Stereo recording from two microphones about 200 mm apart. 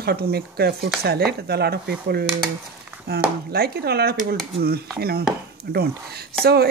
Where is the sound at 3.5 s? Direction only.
50° right (ahead or behind).